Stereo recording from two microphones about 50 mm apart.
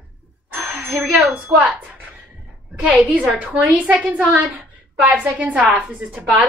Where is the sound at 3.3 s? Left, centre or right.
Right.